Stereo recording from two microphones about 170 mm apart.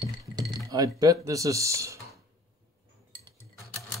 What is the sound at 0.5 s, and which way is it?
Chink, 20° right (ahead or behind).